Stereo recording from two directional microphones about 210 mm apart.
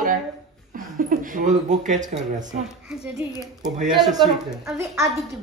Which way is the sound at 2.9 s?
10° right (ahead or behind).